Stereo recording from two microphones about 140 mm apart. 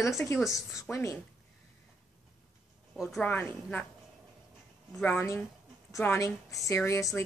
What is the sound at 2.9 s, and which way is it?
Speech, centre (ahead or behind).